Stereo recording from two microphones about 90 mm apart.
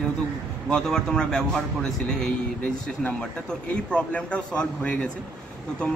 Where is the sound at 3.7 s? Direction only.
15° left (ahead or behind).